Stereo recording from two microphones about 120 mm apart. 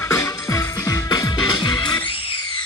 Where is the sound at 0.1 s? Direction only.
25° left (ahead or behind).